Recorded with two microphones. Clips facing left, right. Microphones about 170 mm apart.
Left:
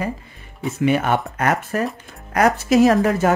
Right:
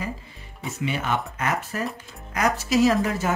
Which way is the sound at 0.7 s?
55° left (ahead or behind).